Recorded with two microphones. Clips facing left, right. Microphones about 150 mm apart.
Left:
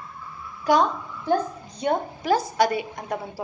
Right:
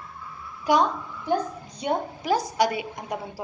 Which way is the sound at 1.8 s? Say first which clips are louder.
Left 2 dB; 15° right (ahead or behind).